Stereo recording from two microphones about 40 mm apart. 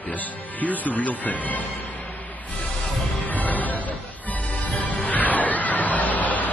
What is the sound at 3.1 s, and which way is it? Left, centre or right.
Music, left.